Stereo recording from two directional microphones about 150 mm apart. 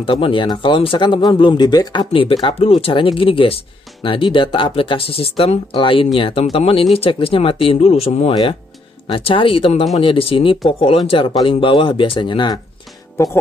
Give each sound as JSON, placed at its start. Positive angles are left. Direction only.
{"t": 0.0, "sound": "speech", "side_deg": 35}
{"t": 13.2, "sound": "speech", "side_deg": 15}